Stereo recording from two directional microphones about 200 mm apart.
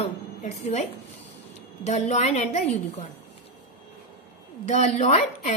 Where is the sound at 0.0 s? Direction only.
35° left (ahead or behind).